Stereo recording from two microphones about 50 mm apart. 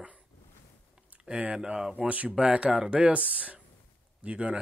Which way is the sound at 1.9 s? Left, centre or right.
Right.